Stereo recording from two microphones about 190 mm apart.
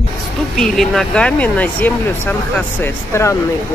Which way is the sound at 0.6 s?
5° left (ahead or behind).